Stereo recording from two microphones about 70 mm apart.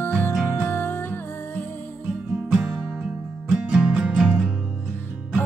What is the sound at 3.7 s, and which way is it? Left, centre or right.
Music, centre.